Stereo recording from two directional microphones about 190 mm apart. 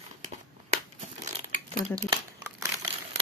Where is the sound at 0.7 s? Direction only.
35° right (ahead or behind).